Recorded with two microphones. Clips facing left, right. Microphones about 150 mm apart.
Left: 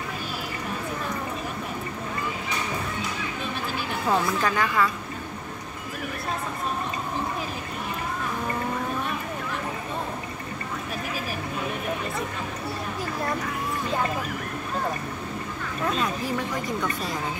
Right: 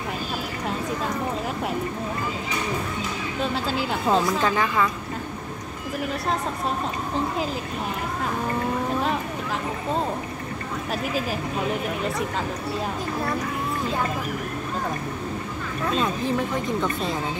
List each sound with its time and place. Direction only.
4.1 s speech: 25° right (ahead or behind)